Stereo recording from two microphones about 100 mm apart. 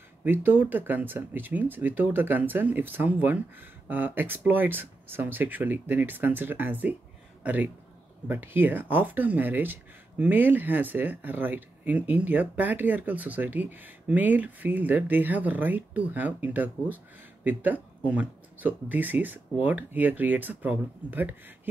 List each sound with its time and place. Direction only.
0.2 s speech: 20° right (ahead or behind)